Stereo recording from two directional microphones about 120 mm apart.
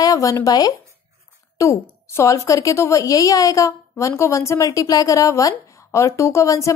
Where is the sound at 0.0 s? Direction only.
30° left (ahead or behind).